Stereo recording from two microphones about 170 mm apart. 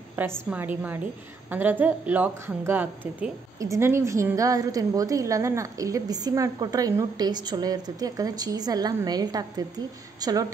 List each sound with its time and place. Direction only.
0.5 s a woman's voice: 10° right (ahead or behind)